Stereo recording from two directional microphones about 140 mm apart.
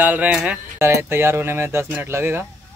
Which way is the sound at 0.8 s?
20° right (ahead or behind).